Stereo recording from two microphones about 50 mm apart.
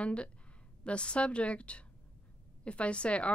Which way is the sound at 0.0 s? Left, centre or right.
Left.